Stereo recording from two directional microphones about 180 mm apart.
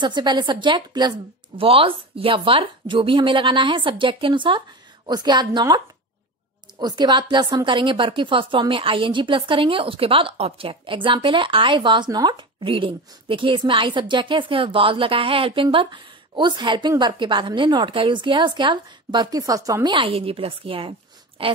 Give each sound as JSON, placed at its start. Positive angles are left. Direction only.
{"t": 0.0, "sound": "a woman's voice", "side_deg": -25}
{"t": 6.8, "sound": "a woman's voice", "side_deg": -25}